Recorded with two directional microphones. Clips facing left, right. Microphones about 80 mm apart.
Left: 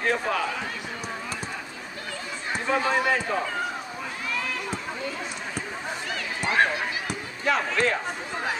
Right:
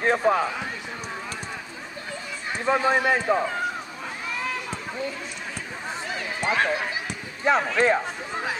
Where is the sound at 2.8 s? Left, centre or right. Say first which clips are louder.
Right 3 dB; right.